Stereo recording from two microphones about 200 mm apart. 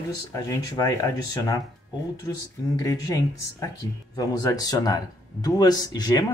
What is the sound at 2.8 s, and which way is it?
Speech, 15° left (ahead or behind).